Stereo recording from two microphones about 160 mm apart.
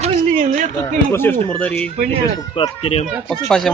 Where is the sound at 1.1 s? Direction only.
15° left (ahead or behind).